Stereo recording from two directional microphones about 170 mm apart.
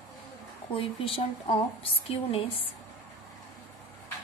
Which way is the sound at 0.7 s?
30° left (ahead or behind).